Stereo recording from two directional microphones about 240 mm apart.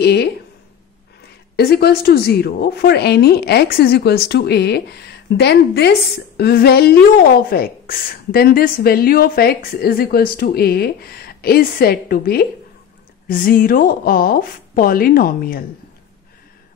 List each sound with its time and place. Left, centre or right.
0.0 s a woman's voice: left
1.6 s a woman's voice: left